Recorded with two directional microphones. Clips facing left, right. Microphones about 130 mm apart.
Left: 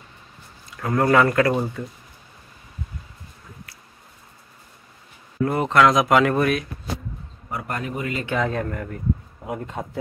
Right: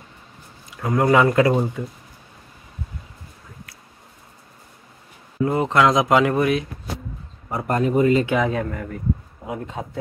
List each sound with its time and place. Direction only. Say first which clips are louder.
0.7 s speech: right 1 dB; 15° right (ahead or behind)
5.4 s speech: even; 20° right (ahead or behind)
8.3 s speech: right 3 dB; 10° right (ahead or behind)